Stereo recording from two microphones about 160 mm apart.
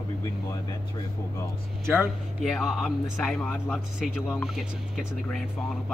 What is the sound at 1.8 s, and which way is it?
Speech, 15° right (ahead or behind).